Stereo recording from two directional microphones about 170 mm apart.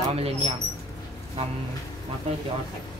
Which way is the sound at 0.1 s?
35° right (ahead or behind).